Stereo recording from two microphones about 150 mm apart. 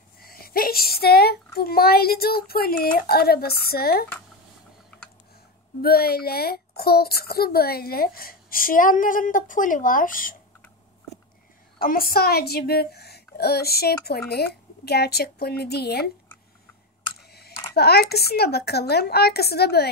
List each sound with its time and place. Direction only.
0.2 s a child's voice: 85° left
5.8 s speech: 90° left; by 10.3 s 65° left (ahead or behind)
11.8 s a woman's voice: 75° left (ahead or behind); by 16.1 s 90° left
17.2 s speech: 90° left